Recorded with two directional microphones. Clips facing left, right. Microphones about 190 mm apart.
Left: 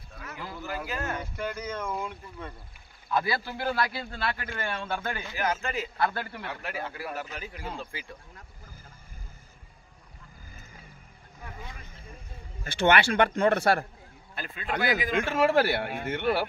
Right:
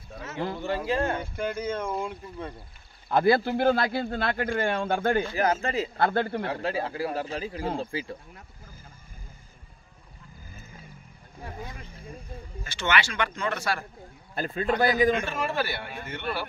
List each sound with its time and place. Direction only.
0.2 s speech: 25° right (ahead or behind)
3.1 s speech: 55° right (ahead or behind)
3.6 s speech: 25° right (ahead or behind)
3.9 s a man's voice: 50° right (ahead or behind); by 8.2 s 30° right (ahead or behind)
12.6 s speech: 55° left (ahead or behind)
14.3 s a man's voice: 40° right (ahead or behind)
15.1 s speech: 60° left (ahead or behind)